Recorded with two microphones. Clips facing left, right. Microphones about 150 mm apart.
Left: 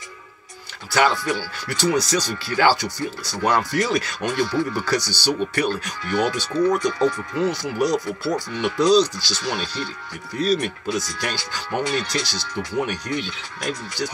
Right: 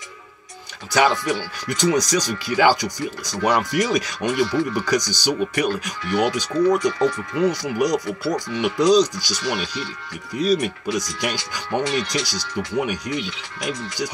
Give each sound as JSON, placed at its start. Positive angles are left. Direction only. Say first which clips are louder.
{"t": 0.9, "sound": "speech", "louder": "right 1 dB", "side_deg": -20}